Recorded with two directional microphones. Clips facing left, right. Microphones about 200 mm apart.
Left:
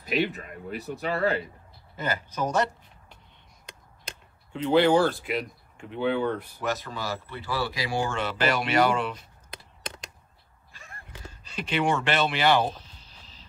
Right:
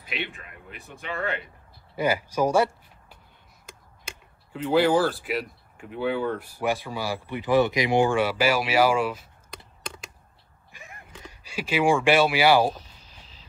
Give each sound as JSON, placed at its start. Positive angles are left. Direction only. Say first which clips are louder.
{"t": 0.0, "sound": "speech", "louder": "left 8 dB", "side_deg": 40}
{"t": 2.0, "sound": "speech", "louder": "right 6 dB", "side_deg": -10}
{"t": 10.7, "sound": "a sound", "louder": "right 2 dB", "side_deg": -15}